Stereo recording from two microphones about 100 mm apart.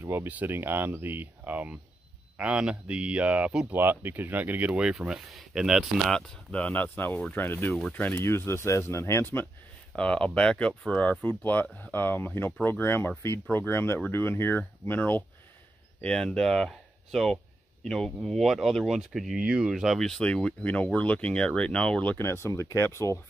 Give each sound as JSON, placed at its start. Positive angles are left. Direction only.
{"t": 0.0, "sound": "speech", "side_deg": -25}
{"t": 9.9, "sound": "speech", "side_deg": 10}
{"t": 16.0, "sound": "speech", "side_deg": 5}
{"t": 22.1, "sound": "speech", "side_deg": 25}